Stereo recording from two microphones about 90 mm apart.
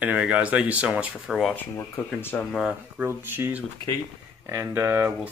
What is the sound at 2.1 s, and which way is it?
Speech, 25° left (ahead or behind).